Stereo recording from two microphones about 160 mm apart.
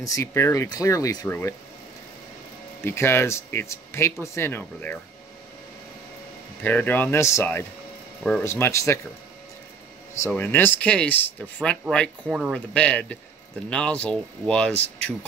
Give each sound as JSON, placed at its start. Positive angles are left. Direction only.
{"t": 0.0, "sound": "speech", "side_deg": 20}
{"t": 2.8, "sound": "speech", "side_deg": 15}
{"t": 6.6, "sound": "speech", "side_deg": 10}
{"t": 10.2, "sound": "speech", "side_deg": 10}
{"t": 12.3, "sound": "speech", "side_deg": -5}
{"t": 12.5, "sound": "speech", "side_deg": 10}